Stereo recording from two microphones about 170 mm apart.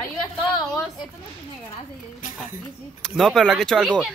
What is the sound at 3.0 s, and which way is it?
Speech, centre (ahead or behind).